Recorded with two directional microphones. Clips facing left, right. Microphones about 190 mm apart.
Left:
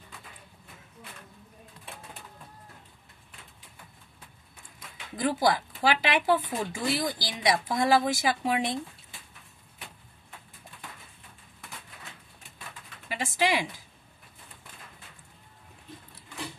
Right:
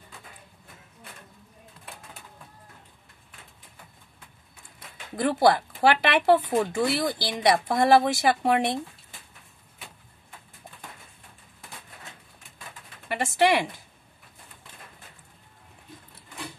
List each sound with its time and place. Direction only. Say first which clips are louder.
4.7 s speech: right 6 dB; 60° right (ahead or behind)
13.1 s speech: right 5 dB; 60° right (ahead or behind)